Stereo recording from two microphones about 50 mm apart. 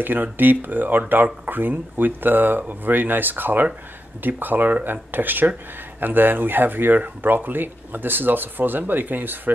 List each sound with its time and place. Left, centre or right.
0.0 s speech: right